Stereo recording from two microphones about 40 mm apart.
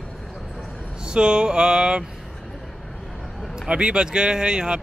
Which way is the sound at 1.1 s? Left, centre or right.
Right.